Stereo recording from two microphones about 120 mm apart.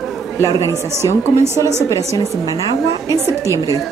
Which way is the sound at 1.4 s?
20° right (ahead or behind).